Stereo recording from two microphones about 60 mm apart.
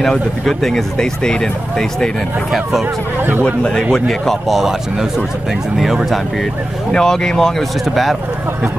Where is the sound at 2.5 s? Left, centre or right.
Centre.